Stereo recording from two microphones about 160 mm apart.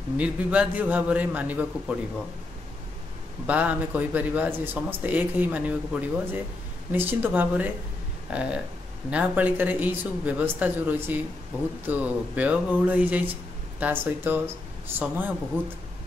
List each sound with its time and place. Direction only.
0.2 s speech: 10° right (ahead or behind)
3.4 s speech: 10° right (ahead or behind)